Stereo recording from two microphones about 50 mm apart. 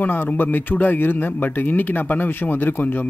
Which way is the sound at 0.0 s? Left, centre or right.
Left.